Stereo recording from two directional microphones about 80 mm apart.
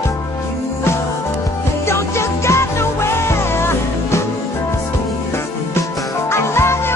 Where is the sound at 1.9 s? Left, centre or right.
Left.